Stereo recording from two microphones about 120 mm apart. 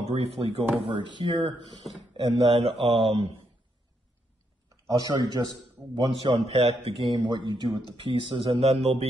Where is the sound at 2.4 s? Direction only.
55° right (ahead or behind).